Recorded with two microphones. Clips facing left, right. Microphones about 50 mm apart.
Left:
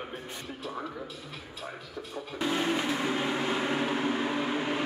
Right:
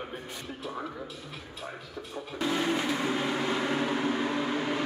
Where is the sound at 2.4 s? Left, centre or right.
Centre.